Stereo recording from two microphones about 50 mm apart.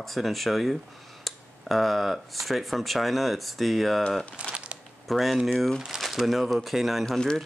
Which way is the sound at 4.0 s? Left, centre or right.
Centre.